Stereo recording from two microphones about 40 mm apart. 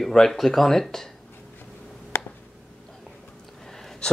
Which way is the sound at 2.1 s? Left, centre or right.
Left.